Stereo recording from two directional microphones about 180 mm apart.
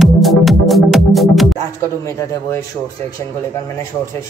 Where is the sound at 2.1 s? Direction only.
15° left (ahead or behind).